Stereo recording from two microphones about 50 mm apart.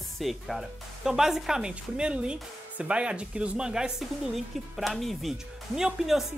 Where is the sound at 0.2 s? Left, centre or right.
Centre.